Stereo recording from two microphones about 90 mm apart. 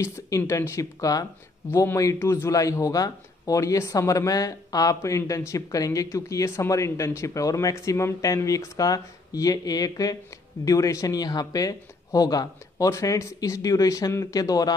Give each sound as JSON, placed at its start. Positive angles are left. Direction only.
{"t": 0.5, "sound": "speech", "side_deg": 35}